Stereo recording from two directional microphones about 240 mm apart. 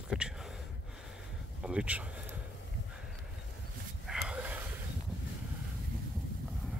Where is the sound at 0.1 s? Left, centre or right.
Centre.